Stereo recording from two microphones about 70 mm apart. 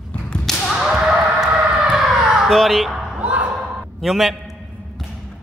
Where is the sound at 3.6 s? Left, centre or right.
Centre.